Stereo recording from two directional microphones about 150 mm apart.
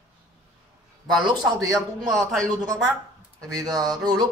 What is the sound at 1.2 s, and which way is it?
Speech, 20° right (ahead or behind).